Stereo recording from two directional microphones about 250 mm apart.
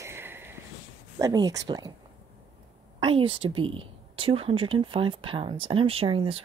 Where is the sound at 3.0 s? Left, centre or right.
Right.